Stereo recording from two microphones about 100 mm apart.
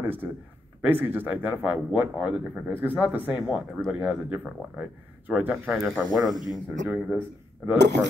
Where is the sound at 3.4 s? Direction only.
5° right (ahead or behind).